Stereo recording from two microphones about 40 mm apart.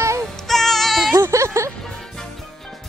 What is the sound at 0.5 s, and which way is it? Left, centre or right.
Music, centre.